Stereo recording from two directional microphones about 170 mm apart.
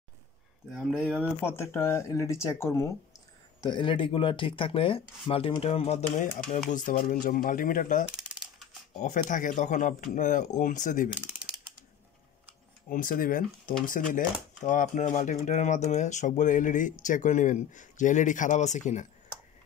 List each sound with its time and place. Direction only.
1.4 s speech: 15° left (ahead or behind)
3.6 s speech: 30° left (ahead or behind)
6.7 s speech: 55° left (ahead or behind)
8.1 s typewriter: 5° right (ahead or behind)
9.0 s speech: 50° left (ahead or behind)
12.9 s speech: 55° left (ahead or behind)